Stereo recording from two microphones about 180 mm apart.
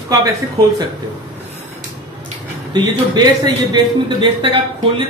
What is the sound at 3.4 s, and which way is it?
Speech, 25° right (ahead or behind).